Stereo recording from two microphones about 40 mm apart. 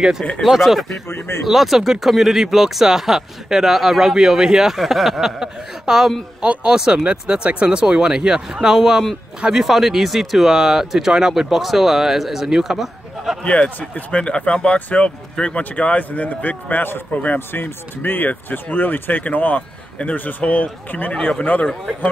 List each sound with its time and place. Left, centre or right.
0.4 s speech: centre
1.0 s speech: left
1.5 s speech: centre
5.4 s speech: centre
12.7 s a sound: centre
13.4 s speech: left
14.1 s speech: left
17.5 s speech: left
19.2 s speech: left
21.1 s speech: left